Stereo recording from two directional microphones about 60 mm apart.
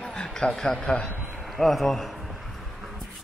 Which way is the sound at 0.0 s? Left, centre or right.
Centre.